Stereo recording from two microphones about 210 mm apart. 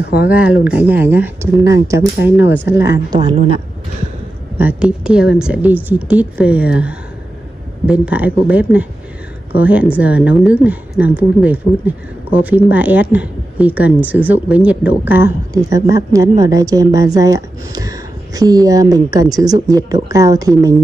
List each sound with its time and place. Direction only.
0.3 s speech: 5° right (ahead or behind); by 3.6 s 30° right (ahead or behind)
4.6 s a woman's voice: 5° right (ahead or behind)